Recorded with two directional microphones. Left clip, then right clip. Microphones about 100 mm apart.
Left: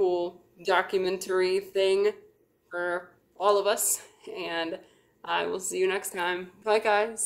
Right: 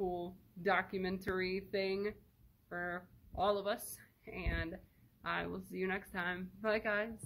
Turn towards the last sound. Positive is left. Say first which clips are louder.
# left 12 dB
turn(degrees=40)  # may be behind; listen again after turning